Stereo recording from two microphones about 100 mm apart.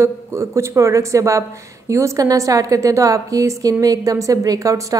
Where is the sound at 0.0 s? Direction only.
30° right (ahead or behind).